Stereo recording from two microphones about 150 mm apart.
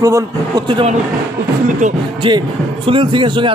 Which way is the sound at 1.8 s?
55° right (ahead or behind).